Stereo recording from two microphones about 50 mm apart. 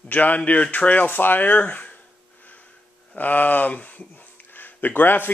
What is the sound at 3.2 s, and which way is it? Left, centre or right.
Speech, left.